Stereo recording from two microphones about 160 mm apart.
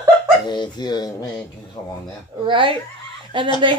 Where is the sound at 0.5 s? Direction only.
25° left (ahead or behind).